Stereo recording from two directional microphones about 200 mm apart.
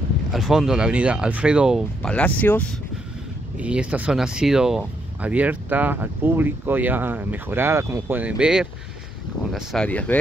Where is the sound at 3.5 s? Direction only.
5° right (ahead or behind).